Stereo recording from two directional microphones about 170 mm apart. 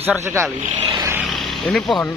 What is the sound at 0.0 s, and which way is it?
Speech, 15° right (ahead or behind).